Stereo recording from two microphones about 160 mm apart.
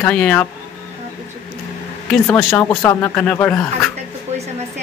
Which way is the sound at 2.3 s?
15° left (ahead or behind).